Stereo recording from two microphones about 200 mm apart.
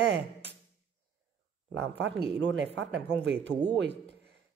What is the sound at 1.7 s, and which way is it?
Speech, 60° right (ahead or behind).